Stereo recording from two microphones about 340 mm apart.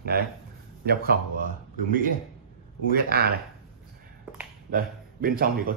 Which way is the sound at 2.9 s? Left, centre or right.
Right.